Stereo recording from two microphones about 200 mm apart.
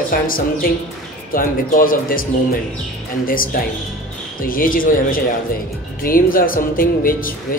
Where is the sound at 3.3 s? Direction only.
45° left (ahead or behind).